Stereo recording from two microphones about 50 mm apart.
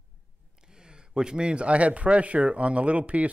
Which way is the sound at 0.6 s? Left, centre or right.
Centre.